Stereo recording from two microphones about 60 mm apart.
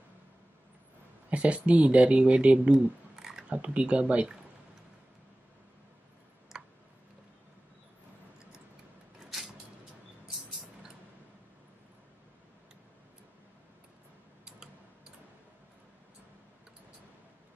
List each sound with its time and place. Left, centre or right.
1.3 s speech: right
3.2 s a sound: centre
3.4 s speech: right
6.5 s tick: centre